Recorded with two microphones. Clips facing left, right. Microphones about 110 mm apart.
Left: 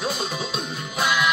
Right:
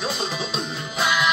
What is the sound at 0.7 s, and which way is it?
Music, 30° right (ahead or behind).